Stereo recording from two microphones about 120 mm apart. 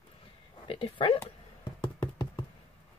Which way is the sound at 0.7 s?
45° left (ahead or behind).